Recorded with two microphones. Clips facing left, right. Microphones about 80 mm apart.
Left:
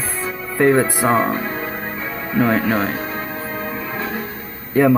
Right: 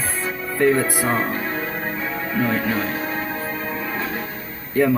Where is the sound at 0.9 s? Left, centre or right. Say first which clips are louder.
Left 5 dB; left.